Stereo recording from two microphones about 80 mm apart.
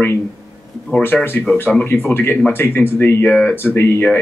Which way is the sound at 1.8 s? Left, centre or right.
Left.